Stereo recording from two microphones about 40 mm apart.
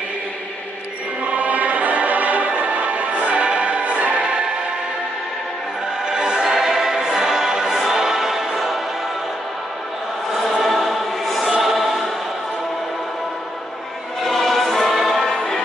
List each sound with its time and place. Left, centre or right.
1.2 s music: right
6.0 s music: centre
10.5 s choir: centre
14.2 s music: centre